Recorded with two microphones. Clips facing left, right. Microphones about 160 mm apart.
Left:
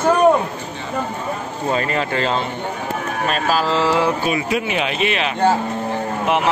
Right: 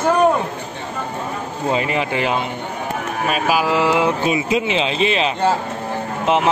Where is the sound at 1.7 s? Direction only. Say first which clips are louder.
Even; 15° right (ahead or behind).